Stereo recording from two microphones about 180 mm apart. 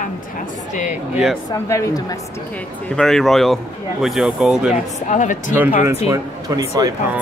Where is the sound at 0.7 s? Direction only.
45° left (ahead or behind).